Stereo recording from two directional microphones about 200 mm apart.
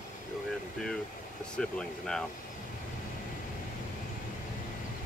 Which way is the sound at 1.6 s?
5° left (ahead or behind).